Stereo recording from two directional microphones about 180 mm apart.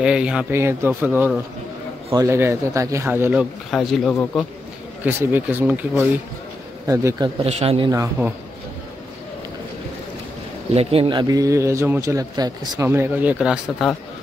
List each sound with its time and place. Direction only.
0.0 s speech: 5° right (ahead or behind)
3.7 s speech: centre (ahead or behind)
5.0 s speech: 10° right (ahead or behind)
7.4 s speech: 35° right (ahead or behind)
7.9 s speech: 15° right (ahead or behind)
10.7 s speech: 35° right (ahead or behind); by 13.8 s 5° right (ahead or behind)